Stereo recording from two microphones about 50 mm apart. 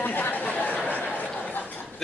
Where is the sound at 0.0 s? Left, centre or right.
Left.